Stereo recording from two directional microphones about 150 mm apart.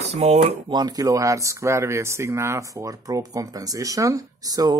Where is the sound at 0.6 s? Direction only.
30° right (ahead or behind).